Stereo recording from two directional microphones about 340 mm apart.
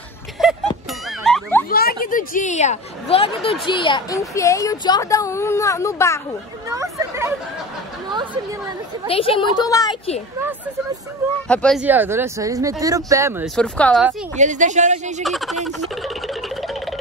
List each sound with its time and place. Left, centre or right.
0.4 s a sound: centre
0.8 s boing: centre
1.7 s a woman's voice: left; by 6.2 s centre
6.7 s chatter: centre
9.0 s a woman's voice: centre
11.4 s speech: centre
14.3 s speech: right
15.2 s a sound: centre